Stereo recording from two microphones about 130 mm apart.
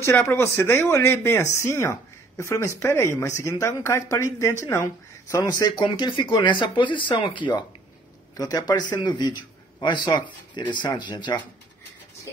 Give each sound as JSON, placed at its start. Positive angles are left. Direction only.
{"t": 0.0, "sound": "speech", "side_deg": 20}